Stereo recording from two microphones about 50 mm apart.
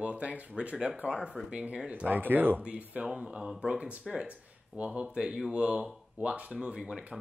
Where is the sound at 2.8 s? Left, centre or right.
Right.